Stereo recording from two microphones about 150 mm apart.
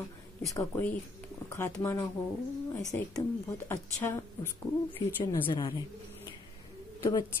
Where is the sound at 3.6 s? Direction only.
20° left (ahead or behind).